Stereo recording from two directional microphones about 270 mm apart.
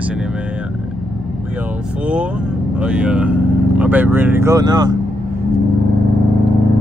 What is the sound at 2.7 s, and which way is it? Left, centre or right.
Speech, centre.